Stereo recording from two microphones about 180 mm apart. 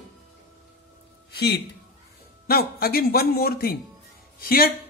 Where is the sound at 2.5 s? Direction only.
55° left (ahead or behind).